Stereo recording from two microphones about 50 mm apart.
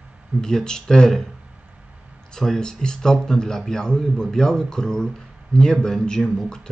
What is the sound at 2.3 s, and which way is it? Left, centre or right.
Speech, centre.